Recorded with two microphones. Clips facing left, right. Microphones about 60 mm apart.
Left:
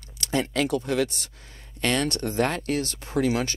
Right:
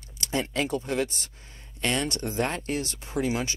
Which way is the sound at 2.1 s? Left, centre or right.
Left.